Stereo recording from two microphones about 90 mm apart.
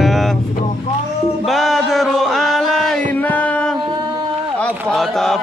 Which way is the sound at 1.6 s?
Centre (ahead or behind).